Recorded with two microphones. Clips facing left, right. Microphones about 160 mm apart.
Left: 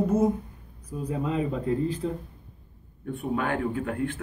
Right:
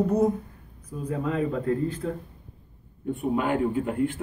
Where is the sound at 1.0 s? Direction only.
20° left (ahead or behind).